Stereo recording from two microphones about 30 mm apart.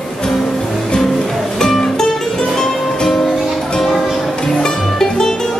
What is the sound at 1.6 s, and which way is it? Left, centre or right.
Music, centre.